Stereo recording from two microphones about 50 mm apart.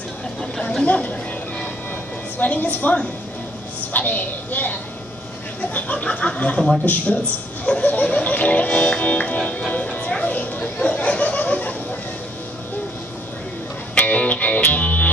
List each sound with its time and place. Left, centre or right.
0.8 s speech: left
2.3 s a child's voice: left
7.6 s music: left
9.6 s chatter: left
13.9 s music: left